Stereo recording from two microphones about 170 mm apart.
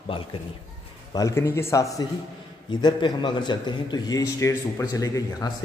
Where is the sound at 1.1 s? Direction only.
20° left (ahead or behind).